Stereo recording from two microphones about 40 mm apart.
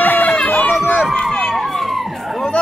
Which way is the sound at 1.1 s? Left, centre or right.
Centre.